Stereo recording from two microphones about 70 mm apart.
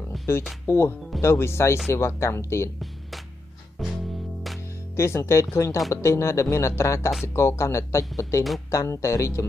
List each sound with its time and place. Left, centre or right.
0.7 s speech: left
3.8 s music: centre
4.9 s speech: left